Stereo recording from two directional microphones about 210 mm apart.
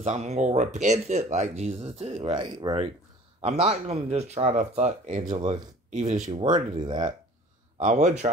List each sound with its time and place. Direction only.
0.0 s speech: 30° right (ahead or behind)
6.4 s speech: 20° right (ahead or behind)
7.7 s speech: 35° right (ahead or behind)